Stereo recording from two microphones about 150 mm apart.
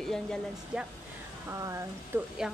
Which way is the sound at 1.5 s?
20° right (ahead or behind).